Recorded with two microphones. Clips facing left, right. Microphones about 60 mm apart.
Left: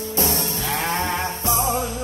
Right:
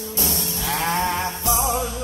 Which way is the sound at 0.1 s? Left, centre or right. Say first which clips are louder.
Left 4 dB; left.